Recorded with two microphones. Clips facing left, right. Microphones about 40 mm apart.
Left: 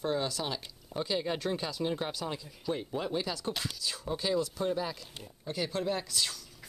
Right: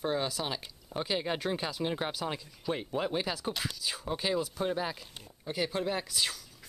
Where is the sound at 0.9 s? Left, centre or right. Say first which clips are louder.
Even; right.